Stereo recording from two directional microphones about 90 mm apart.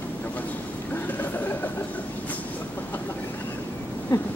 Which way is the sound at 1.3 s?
20° left (ahead or behind).